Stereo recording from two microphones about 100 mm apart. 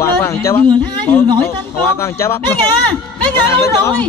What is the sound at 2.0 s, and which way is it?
Speech, 25° left (ahead or behind).